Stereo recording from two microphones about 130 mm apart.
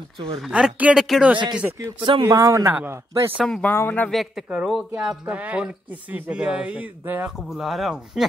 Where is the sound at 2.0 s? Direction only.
40° right (ahead or behind).